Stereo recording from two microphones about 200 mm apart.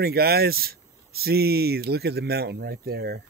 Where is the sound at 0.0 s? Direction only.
50° right (ahead or behind).